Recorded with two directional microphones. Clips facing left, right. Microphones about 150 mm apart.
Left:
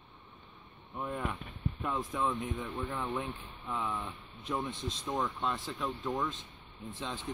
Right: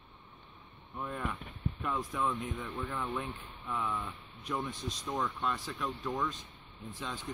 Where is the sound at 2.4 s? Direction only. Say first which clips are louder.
Left 2 dB; centre (ahead or behind).